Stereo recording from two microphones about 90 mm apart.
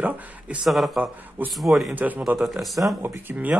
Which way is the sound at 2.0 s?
20° right (ahead or behind).